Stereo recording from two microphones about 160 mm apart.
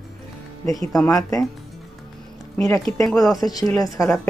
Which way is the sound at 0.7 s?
20° left (ahead or behind).